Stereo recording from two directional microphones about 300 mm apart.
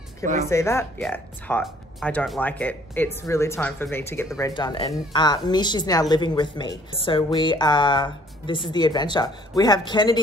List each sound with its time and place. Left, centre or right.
0.2 s speech: right
0.5 s speech: centre